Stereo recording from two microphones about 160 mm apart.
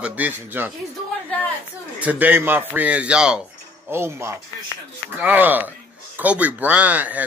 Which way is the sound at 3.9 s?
15° right (ahead or behind).